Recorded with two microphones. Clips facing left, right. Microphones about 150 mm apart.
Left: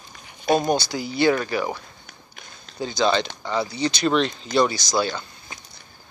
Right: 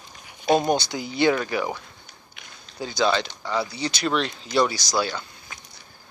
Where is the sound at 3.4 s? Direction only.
20° left (ahead or behind).